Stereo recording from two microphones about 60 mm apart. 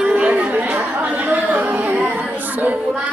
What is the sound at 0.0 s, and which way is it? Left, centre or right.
Chatter, centre.